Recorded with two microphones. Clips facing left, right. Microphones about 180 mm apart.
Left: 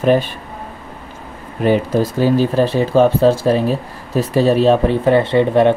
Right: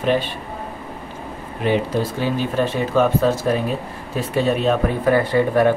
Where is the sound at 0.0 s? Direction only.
45° left (ahead or behind).